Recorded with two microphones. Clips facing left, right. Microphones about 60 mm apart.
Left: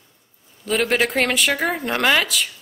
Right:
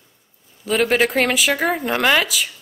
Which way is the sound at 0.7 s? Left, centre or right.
Centre.